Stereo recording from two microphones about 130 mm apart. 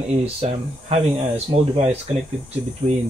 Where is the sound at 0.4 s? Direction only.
50° right (ahead or behind).